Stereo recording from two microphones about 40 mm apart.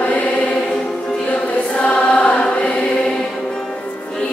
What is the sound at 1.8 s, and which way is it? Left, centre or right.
Choir, left.